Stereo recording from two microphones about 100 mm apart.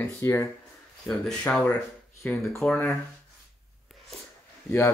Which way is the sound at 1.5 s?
25° left (ahead or behind).